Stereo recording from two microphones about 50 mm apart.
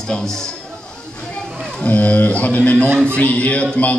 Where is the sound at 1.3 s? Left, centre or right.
Left.